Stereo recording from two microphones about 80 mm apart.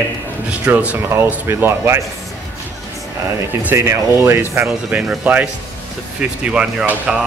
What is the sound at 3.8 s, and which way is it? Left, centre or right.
Speech, right.